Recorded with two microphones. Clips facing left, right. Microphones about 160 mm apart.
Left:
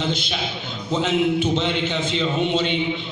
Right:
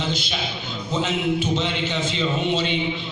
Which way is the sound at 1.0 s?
60° left (ahead or behind).